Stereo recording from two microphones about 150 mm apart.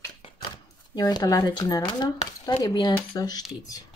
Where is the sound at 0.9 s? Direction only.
25° left (ahead or behind).